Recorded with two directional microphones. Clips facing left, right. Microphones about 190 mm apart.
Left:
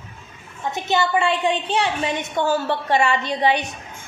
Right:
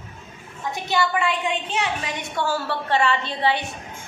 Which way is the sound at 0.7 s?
25° left (ahead or behind).